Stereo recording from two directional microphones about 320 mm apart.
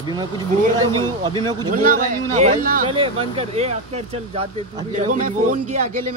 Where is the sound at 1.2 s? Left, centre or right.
Centre.